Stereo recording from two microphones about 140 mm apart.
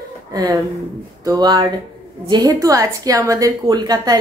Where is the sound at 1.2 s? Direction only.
25° right (ahead or behind).